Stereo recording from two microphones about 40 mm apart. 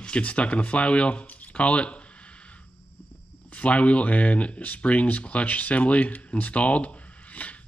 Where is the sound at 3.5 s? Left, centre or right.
Left.